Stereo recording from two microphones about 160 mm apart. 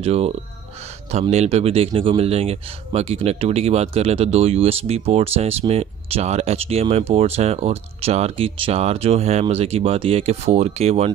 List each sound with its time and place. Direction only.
0.0 s speech: 40° right (ahead or behind)